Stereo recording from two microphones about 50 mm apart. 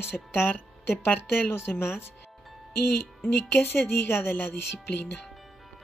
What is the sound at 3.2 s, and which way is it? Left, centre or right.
Speech, left.